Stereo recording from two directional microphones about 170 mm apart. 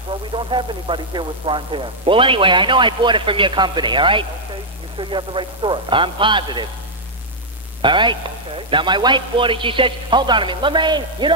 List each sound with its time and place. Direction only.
0.1 s speech: 30° right (ahead or behind)
7.8 s speech: 30° right (ahead or behind)